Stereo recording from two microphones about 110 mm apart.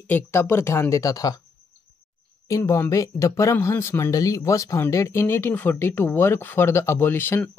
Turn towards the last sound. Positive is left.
turn(degrees=20)  # may be behind; listen again after turning